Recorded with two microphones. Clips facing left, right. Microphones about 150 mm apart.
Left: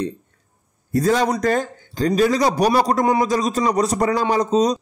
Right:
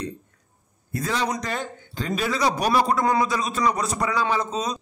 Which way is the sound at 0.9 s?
40° left (ahead or behind).